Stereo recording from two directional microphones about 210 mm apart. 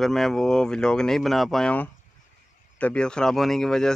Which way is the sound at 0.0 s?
Centre (ahead or behind).